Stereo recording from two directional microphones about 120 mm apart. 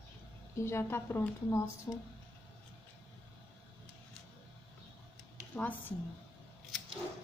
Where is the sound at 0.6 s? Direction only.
20° left (ahead or behind).